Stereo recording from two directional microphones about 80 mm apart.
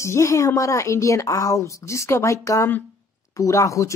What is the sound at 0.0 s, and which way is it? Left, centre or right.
A woman's voice, left.